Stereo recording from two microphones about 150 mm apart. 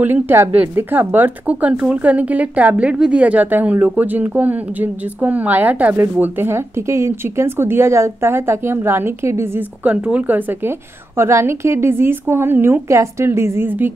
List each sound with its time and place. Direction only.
0.0 s speech: 15° right (ahead or behind)